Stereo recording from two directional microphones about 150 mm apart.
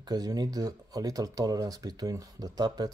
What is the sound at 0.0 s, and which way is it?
Speech, 25° right (ahead or behind).